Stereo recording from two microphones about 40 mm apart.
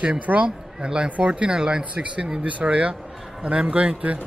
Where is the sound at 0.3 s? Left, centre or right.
Right.